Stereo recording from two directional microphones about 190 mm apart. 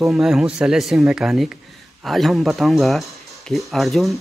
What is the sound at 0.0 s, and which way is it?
Speech, centre (ahead or behind).